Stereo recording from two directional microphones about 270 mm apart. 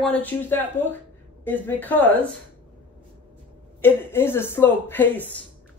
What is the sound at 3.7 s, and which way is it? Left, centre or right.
Speech, centre.